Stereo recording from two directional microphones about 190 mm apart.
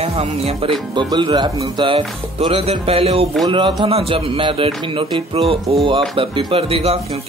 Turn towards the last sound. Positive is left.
turn(degrees=-30)  # may be behind; listen again after turning